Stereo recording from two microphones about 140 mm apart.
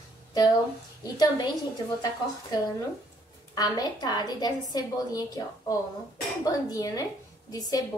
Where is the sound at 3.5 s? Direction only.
30° left (ahead or behind).